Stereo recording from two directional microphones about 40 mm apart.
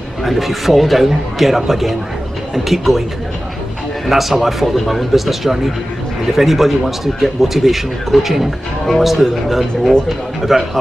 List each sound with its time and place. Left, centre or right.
0.2 s speech: centre
4.1 s speech: centre